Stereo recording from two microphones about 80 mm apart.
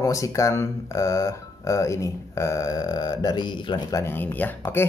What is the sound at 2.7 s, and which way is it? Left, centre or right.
Speech, left.